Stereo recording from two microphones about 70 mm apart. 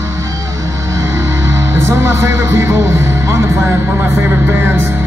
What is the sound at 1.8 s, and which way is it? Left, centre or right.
Speech, right.